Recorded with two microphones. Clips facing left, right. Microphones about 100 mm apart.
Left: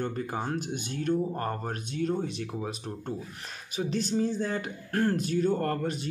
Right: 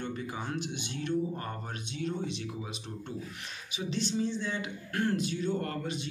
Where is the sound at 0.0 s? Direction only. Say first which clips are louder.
Left 5 dB; 45° left (ahead or behind).